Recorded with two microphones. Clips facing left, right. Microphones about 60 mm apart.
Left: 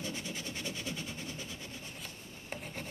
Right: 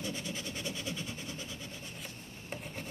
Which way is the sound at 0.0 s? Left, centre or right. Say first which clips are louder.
Right 1 dB; left.